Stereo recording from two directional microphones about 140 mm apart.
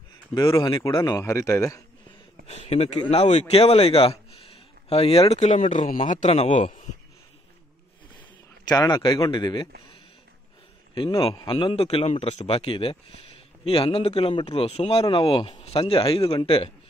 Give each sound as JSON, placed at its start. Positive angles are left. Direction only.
{"t": 0.3, "sound": "a man's voice", "side_deg": 30}
{"t": 2.4, "sound": "a sound", "side_deg": 50}
{"t": 3.1, "sound": "a man's voice", "side_deg": 50}
{"t": 8.6, "sound": "a man's voice", "side_deg": 25}
{"t": 11.0, "sound": "a man's voice", "side_deg": 40}